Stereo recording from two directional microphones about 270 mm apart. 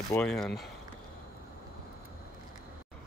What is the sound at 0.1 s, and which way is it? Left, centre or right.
Speech, centre.